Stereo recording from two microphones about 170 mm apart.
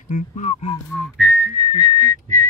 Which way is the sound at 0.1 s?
45° left (ahead or behind).